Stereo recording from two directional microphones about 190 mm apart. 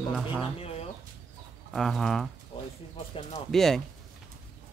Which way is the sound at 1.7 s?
Centre (ahead or behind).